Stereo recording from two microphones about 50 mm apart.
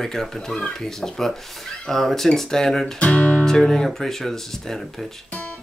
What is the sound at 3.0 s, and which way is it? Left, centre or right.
Speech, centre.